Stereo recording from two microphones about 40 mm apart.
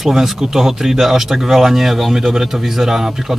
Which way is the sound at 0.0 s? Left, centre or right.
Centre.